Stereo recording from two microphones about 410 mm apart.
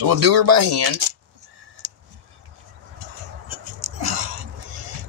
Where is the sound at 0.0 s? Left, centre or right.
Right.